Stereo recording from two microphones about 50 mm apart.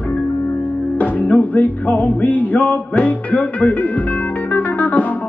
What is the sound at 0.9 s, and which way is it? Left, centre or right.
Music, left.